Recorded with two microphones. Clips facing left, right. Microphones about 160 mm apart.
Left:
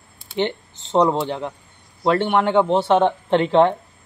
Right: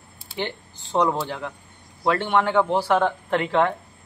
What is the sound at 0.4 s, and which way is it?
Speech, 20° left (ahead or behind).